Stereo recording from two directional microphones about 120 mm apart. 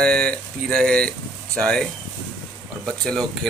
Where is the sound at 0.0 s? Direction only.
5° left (ahead or behind).